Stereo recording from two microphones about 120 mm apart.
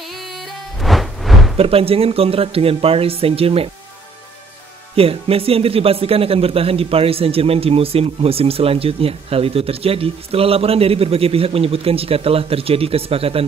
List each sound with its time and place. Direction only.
0.7 s music: centre (ahead or behind)
1.6 s speech: 55° right (ahead or behind)
4.9 s speech: 55° right (ahead or behind)